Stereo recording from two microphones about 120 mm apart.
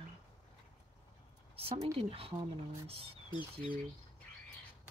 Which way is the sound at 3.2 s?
45° left (ahead or behind).